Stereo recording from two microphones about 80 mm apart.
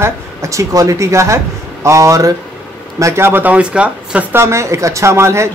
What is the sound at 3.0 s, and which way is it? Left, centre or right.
Speech, right.